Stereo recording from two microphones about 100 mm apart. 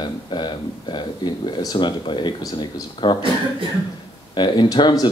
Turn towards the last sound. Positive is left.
turn(degrees=45)  # may be behind; listen again after turning